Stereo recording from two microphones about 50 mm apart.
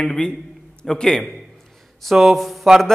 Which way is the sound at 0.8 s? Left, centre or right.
Centre.